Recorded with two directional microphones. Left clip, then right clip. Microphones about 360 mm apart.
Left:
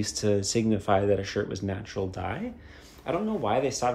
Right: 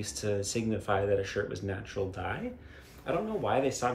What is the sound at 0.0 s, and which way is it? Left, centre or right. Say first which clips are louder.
Speech: left 6 dB; centre.